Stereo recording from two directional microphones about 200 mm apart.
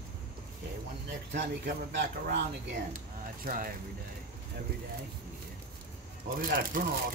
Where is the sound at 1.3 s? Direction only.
60° right (ahead or behind).